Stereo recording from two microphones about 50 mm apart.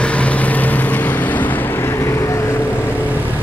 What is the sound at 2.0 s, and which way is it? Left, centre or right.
Vehicle, left.